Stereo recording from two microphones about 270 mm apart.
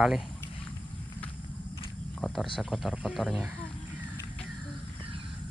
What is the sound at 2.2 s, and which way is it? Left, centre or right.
Cricket, centre.